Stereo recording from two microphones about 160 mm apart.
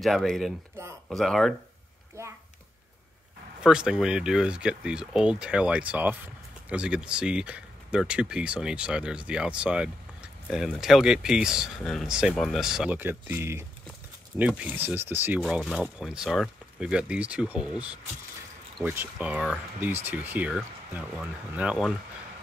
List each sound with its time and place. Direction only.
0.0 s speech: centre (ahead or behind)
3.6 s speech: 5° right (ahead or behind)
15.4 s speech: centre (ahead or behind)
18.9 s speech: 10° right (ahead or behind)